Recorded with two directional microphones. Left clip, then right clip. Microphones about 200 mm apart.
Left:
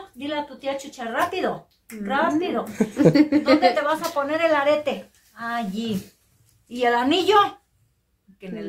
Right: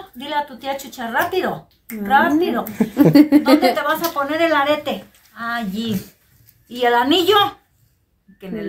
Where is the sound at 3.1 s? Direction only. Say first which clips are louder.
Right 7 dB; 55° right (ahead or behind).